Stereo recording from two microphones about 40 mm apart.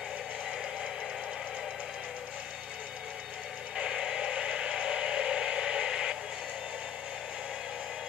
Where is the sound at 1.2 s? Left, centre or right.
Right.